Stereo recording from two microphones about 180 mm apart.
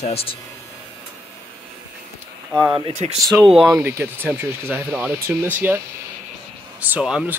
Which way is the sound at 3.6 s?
15° right (ahead or behind).